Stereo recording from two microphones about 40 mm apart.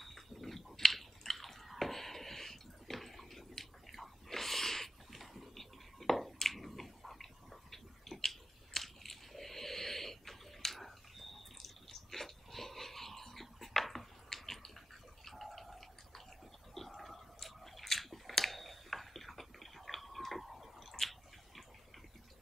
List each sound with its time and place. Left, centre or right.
0.0 s chewing: centre
7.7 s biting: centre
15.2 s a sound: centre